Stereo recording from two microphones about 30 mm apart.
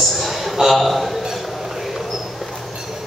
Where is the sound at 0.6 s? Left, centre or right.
Centre.